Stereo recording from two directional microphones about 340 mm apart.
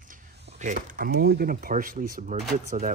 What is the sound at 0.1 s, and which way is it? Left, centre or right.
Speech, right.